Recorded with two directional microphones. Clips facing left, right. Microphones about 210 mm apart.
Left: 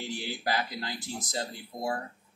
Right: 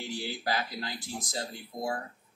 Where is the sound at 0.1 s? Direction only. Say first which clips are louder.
Even; 20° left (ahead or behind).